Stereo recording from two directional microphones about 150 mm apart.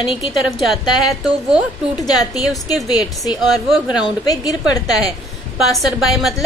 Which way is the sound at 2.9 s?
25° left (ahead or behind).